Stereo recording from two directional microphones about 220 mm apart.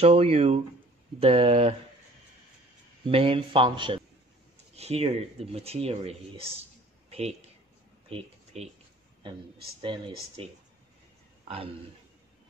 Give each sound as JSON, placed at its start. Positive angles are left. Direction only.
{"t": 0.0, "sound": "speech", "side_deg": -25}
{"t": 3.1, "sound": "speech", "side_deg": -25}
{"t": 9.8, "sound": "a man's voice", "side_deg": -20}